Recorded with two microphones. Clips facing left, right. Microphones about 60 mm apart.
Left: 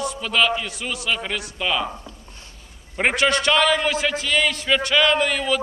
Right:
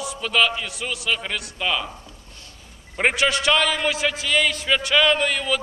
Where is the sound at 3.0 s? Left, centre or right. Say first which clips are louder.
Left 1 dB; centre.